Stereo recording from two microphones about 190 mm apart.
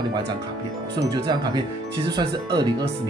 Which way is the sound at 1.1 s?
20° right (ahead or behind).